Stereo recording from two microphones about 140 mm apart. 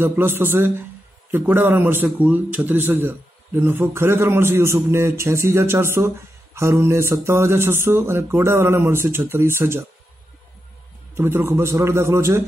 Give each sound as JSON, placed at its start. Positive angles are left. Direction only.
{"t": 0.0, "sound": "a man's voice", "side_deg": -15}
{"t": 11.1, "sound": "a man's voice", "side_deg": -15}